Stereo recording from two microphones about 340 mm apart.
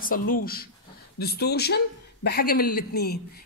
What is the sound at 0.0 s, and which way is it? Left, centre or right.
Speech, left.